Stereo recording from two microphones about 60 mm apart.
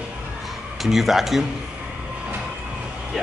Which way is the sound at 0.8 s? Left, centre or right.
Centre.